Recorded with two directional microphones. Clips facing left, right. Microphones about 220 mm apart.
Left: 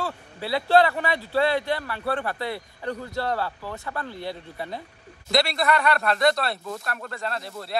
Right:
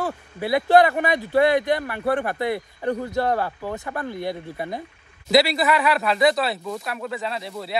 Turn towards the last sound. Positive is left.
turn(degrees=0)  # may be behind; listen again after turning